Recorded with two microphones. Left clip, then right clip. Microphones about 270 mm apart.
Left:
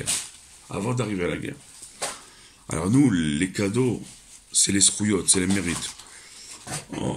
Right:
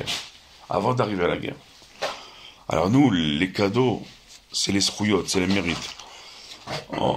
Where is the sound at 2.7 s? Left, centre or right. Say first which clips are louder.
Right 2 dB; centre.